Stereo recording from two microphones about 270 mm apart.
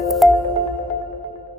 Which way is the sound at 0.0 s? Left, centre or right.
Centre.